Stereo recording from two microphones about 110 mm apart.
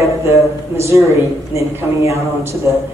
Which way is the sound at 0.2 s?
25° right (ahead or behind).